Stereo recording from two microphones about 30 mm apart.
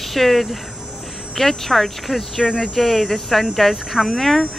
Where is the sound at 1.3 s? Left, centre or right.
Centre.